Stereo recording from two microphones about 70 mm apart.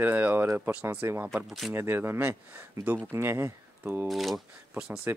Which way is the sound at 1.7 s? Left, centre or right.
Right.